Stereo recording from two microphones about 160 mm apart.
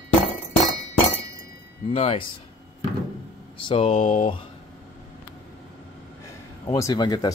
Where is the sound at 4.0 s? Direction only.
50° left (ahead or behind).